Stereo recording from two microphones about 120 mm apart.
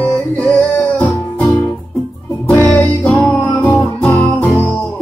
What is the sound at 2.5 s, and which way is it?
Music, 15° left (ahead or behind).